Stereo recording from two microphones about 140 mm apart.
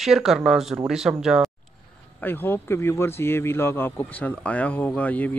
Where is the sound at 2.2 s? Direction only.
15° left (ahead or behind).